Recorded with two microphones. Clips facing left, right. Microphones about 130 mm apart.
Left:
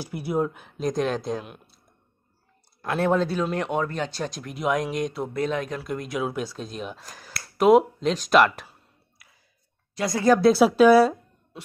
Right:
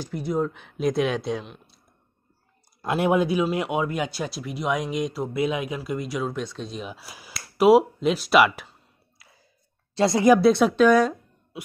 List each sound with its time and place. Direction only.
0.0 s speech: 10° left (ahead or behind)
2.8 s speech: 15° right (ahead or behind)
9.2 s a sound: 30° right (ahead or behind)
9.9 s speech: 25° right (ahead or behind)
10.4 s speech: 5° left (ahead or behind)